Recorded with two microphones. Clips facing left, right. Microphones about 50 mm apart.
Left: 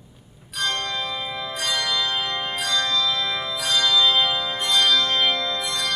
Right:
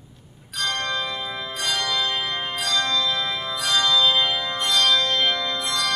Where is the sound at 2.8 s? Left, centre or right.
Right.